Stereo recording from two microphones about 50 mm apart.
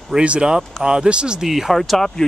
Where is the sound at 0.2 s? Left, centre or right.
Right.